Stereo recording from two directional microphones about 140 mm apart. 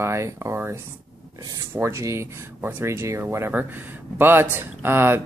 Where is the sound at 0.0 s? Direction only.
20° right (ahead or behind).